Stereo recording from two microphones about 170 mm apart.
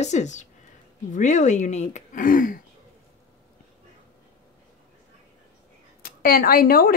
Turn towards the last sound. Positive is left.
turn(degrees=60)  # may be behind; listen again after turning